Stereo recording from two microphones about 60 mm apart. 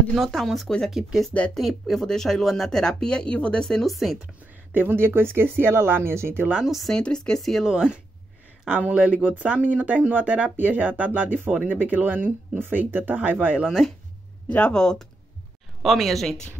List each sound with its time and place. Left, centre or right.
0.2 s speech: centre
3.6 s speech: centre
4.7 s speech: right
6.5 s speech: centre
6.9 s speech: centre
7.6 s speech: centre; by 13.6 s right
13.6 s speech: centre
14.7 s speech: centre
15.8 s speech: centre